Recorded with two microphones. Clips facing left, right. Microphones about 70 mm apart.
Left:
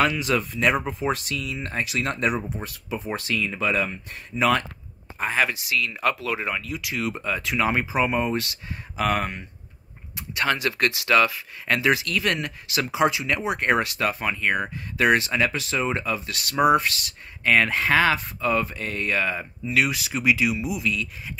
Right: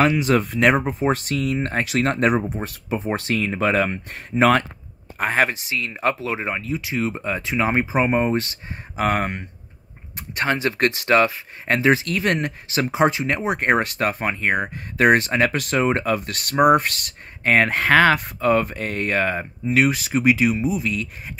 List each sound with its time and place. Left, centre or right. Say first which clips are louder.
0.0 s speech: right 4 dB; right
0.5 s speech: right 5 dB; right
0.9 s speech: right 5 dB; right